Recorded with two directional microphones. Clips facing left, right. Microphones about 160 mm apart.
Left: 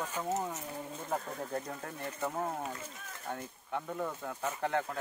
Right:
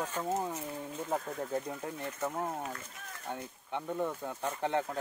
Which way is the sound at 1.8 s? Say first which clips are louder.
Right 1 dB; 15° right (ahead or behind).